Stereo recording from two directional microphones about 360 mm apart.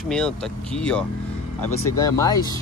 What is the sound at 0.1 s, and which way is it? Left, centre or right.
Speech, centre.